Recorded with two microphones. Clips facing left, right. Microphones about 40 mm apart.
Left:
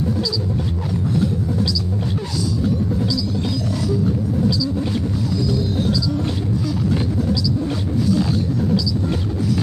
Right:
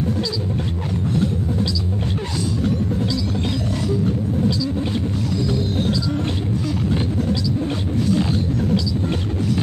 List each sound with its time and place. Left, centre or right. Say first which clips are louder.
3.9 s rumble: left 1 dB; right
5.3 s music: left 1 dB; right
8.0 s a sound: left 1 dB; right